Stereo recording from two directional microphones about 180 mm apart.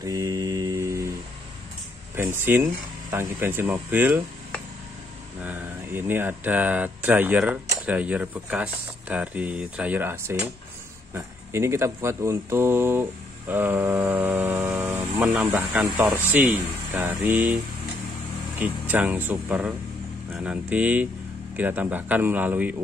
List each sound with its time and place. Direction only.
0.0 s music: 20° right (ahead or behind)
2.1 s speech: 10° right (ahead or behind)
5.4 s speech: 10° right (ahead or behind)
18.6 s speech: 10° right (ahead or behind)